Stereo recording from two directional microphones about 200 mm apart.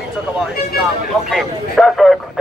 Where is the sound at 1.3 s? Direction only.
Centre (ahead or behind).